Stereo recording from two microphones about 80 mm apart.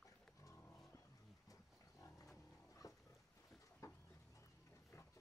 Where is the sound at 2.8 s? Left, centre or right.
Left.